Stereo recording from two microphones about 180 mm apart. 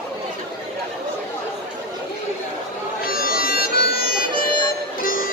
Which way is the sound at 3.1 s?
55° left (ahead or behind).